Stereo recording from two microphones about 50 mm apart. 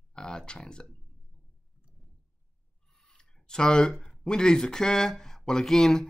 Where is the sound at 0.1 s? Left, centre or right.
Centre.